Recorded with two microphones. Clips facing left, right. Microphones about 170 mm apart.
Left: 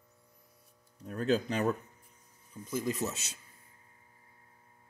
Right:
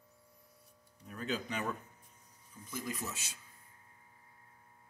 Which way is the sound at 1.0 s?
45° left (ahead or behind).